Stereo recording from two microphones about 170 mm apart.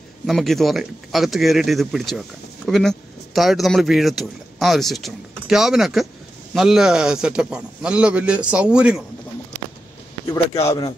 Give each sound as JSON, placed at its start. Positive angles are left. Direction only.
{"t": 0.3, "sound": "speech", "side_deg": 0}
{"t": 10.2, "sound": "speech", "side_deg": 20}